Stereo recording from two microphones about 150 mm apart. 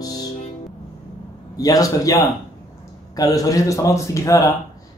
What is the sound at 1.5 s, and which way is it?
Speech, 25° left (ahead or behind).